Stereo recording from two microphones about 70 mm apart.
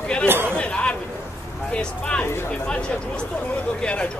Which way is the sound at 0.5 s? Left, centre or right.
Centre.